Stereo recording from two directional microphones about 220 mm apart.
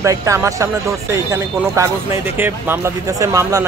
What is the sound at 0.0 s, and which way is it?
Speech, 15° right (ahead or behind).